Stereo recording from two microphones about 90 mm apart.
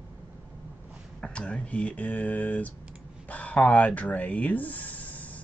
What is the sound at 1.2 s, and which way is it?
Speech, 10° left (ahead or behind).